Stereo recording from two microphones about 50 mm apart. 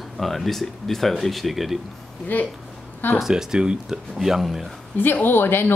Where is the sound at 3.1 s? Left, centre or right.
Centre.